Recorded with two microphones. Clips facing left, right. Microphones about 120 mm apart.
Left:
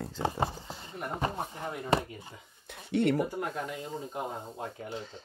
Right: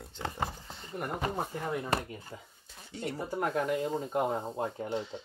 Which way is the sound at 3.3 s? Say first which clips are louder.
Right 5 dB; 50° right (ahead or behind).